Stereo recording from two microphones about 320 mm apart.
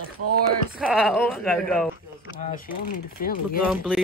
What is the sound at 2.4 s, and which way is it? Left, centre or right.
Speech, left.